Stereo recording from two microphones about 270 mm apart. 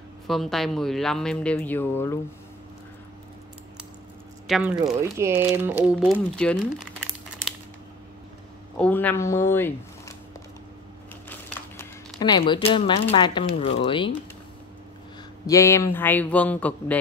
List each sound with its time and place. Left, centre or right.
0.3 s speech: centre
4.5 s speech: centre
8.7 s speech: centre
11.2 s a sound: centre
13.8 s a man's voice: centre
15.4 s a man's voice: centre